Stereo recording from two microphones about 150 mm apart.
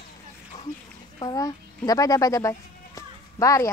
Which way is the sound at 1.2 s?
25° left (ahead or behind).